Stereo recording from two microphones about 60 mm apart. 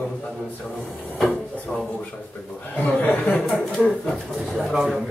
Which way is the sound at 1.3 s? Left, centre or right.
Centre.